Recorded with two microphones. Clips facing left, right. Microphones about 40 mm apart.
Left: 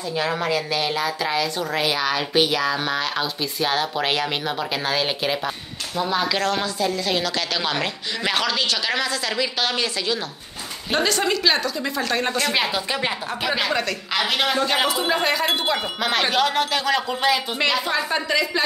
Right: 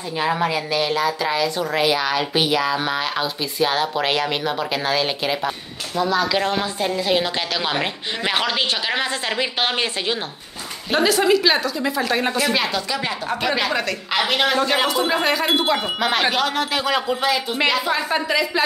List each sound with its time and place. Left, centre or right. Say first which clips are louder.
0.2 s a woman's voice: right 3 dB; centre
5.9 s a woman's voice: right 3 dB; centre
6.4 s a woman's voice: right 1 dB; centre
10.9 s a woman's voice: right 4 dB; centre
12.5 s a woman's voice: right 1 dB; centre
13.4 s a woman's voice: right 1 dB; centre